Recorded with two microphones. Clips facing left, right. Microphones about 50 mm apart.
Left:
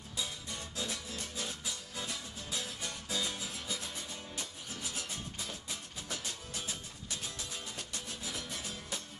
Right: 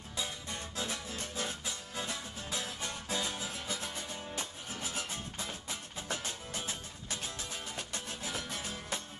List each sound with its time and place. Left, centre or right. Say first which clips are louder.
0.1 s music: right 2 dB; right